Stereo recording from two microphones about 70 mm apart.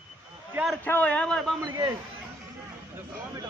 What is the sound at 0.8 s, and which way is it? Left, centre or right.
Speech, left.